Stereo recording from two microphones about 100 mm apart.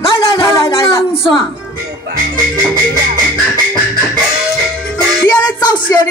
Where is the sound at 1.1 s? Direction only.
60° left (ahead or behind).